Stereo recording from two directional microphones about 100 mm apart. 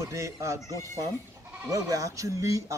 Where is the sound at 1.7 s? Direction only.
35° right (ahead or behind).